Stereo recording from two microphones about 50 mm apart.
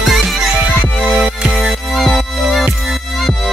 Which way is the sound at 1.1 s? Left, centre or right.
Centre.